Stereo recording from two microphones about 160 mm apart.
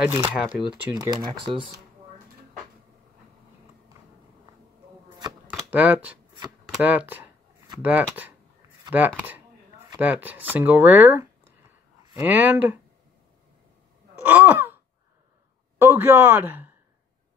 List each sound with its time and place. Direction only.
0.1 s speech: 10° right (ahead or behind)
0.9 s speech: 25° right (ahead or behind)
5.6 s speech: 10° right (ahead or behind)
14.2 s a sound: 10° right (ahead or behind)
15.8 s speech: 15° right (ahead or behind)